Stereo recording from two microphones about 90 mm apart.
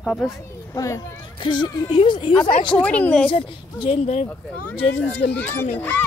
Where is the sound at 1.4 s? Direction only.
60° left (ahead or behind).